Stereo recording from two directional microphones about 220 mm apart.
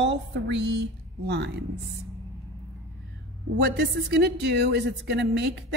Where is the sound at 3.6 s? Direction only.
50° right (ahead or behind).